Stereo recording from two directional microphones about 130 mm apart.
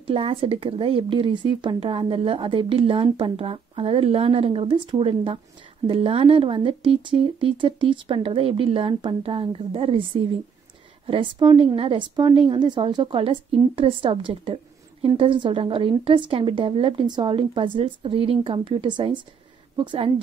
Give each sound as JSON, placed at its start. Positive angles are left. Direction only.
{"t": 0.0, "sound": "a woman's voice", "side_deg": -45}